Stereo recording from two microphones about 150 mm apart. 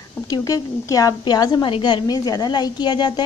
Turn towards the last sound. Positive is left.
turn(degrees=30)  # may be behind; listen again after turning